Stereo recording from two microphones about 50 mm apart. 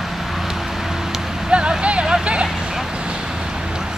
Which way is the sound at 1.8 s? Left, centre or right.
Right.